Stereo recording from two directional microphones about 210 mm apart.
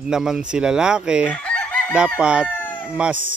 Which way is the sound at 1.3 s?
5° left (ahead or behind).